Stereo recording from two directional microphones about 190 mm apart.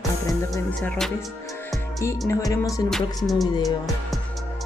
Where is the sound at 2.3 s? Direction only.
15° left (ahead or behind).